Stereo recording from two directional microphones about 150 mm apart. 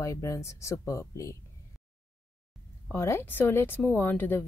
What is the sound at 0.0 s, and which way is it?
Speech, 20° left (ahead or behind).